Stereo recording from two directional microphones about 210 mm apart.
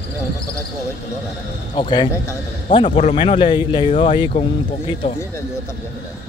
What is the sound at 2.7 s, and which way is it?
Speech, 30° left (ahead or behind).